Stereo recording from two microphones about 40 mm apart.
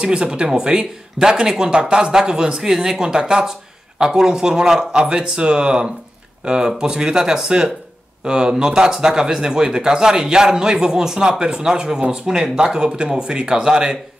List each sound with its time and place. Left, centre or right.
0.0 s speech: right